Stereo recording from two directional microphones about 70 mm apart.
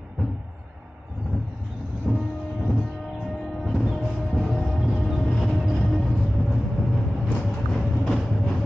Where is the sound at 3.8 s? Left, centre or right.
Centre.